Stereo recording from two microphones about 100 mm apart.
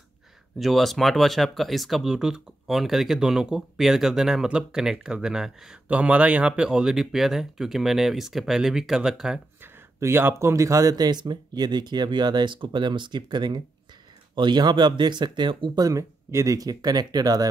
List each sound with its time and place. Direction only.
0.6 s speech: centre (ahead or behind)
9.6 s speech: 25° right (ahead or behind)